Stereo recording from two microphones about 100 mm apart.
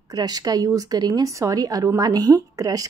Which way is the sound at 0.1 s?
40° right (ahead or behind).